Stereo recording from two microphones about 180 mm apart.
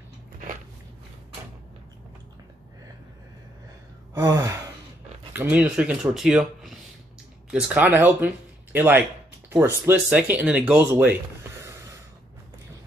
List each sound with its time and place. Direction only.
4.1 s gasp: 20° right (ahead or behind)
5.3 s speech: 10° right (ahead or behind)